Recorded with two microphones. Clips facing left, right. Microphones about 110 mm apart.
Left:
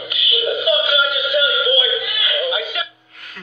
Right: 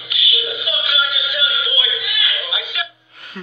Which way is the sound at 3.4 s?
20° right (ahead or behind).